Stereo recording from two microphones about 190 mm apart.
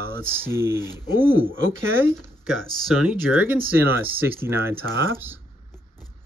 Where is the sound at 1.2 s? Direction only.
10° right (ahead or behind).